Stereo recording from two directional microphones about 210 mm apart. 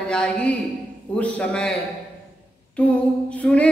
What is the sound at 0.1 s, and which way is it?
Speech, 5° left (ahead or behind).